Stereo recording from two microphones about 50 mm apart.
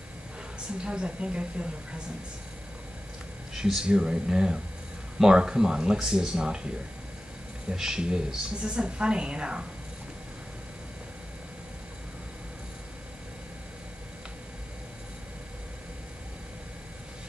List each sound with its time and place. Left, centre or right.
0.8 s a woman's voice: right
3.5 s speech: centre
7.7 s a woman's voice: centre